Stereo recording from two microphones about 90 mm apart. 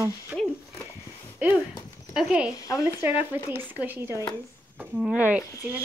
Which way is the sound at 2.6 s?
35° left (ahead or behind).